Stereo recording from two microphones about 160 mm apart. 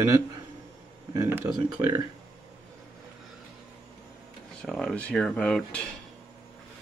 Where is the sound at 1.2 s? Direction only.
15° right (ahead or behind).